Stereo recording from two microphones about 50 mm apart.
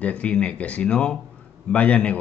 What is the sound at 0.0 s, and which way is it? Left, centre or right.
A man's voice, left.